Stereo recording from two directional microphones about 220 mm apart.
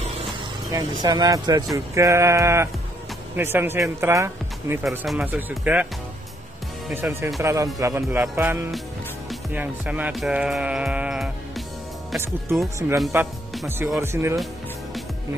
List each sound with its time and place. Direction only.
0.7 s speech: 15° right (ahead or behind)
4.8 s speech: centre (ahead or behind)
7.0 s speech: 10° right (ahead or behind)
9.3 s music: 5° right (ahead or behind)
12.9 s speech: 5° right (ahead or behind)